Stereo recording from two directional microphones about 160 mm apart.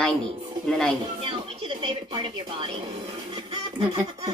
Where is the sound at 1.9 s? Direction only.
35° right (ahead or behind).